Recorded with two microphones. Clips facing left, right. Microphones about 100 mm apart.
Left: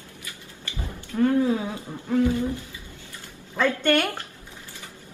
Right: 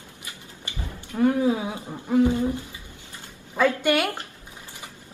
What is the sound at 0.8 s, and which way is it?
Speech, 20° right (ahead or behind).